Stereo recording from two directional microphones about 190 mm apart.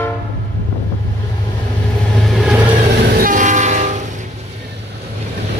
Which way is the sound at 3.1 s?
50° right (ahead or behind).